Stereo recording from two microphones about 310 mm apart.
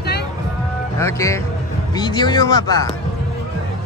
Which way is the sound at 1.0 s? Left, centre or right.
Centre.